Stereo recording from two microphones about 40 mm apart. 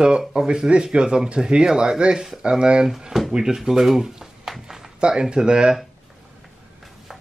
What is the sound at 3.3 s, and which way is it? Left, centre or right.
Speech, centre.